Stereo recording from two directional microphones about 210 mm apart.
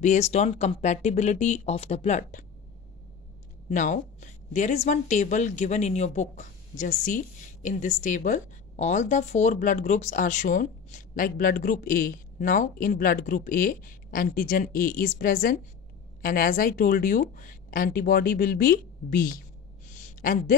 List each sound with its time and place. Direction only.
0.0 s a woman's voice: 35° left (ahead or behind)
3.7 s a woman's voice: 35° left (ahead or behind)
20.0 s a sound: 40° left (ahead or behind)